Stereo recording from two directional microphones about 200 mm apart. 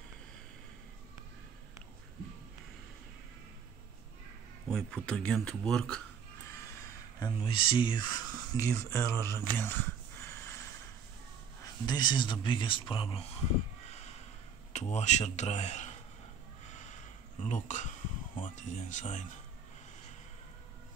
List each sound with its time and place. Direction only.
4.6 s speech: 5° left (ahead or behind)
7.2 s speech: 25° left (ahead or behind)
11.6 s speech: 20° left (ahead or behind)
13.8 s a sound: 35° left (ahead or behind)
14.7 s speech: 35° left (ahead or behind)
16.6 s a sound: 35° left (ahead or behind)
17.4 s speech: 40° left (ahead or behind)